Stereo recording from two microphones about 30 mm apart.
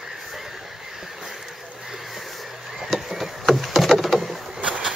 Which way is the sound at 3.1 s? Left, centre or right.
Centre.